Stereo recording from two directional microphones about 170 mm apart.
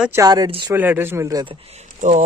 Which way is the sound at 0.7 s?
10° right (ahead or behind).